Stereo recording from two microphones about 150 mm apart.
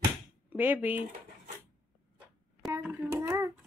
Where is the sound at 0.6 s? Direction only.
10° right (ahead or behind).